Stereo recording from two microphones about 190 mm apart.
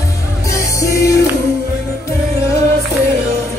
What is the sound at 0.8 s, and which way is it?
Music, 15° left (ahead or behind).